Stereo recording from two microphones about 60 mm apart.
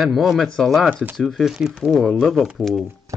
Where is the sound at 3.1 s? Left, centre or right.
Right.